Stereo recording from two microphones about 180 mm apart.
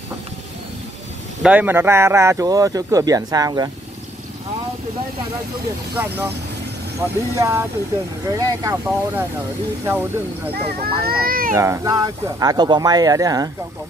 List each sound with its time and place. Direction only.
1.4 s speech: 10° right (ahead or behind)
5.9 s speech: 10° right (ahead or behind)
11.1 s speech: 55° right (ahead or behind)
11.5 s speech: 15° right (ahead or behind)